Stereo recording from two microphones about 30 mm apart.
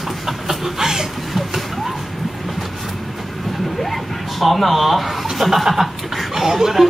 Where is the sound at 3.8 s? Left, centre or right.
Centre.